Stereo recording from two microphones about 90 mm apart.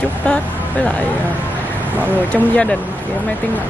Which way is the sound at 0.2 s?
15° left (ahead or behind).